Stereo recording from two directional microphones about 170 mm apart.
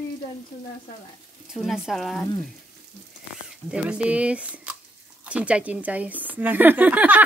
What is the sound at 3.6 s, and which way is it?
Speech, 5° right (ahead or behind).